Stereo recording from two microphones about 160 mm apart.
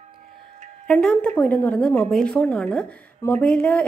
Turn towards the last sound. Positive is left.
turn(degrees=10)  # may be behind; listen again after turning